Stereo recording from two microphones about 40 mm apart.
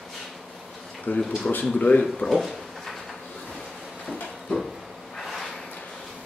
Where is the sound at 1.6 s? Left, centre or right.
Left.